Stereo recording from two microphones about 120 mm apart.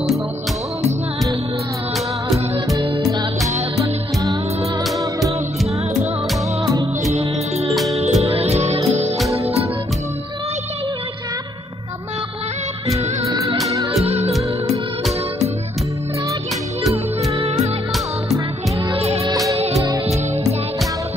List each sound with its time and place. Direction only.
3.8 s music: 25° right (ahead or behind)
6.6 s music: 30° right (ahead or behind)
7.7 s music: centre (ahead or behind)
8.0 s music: 65° right (ahead or behind)
12.9 s music: 25° right (ahead or behind)
14.0 s music: 60° right (ahead or behind)
18.9 s music: 60° right (ahead or behind)
19.2 s music: 30° right (ahead or behind)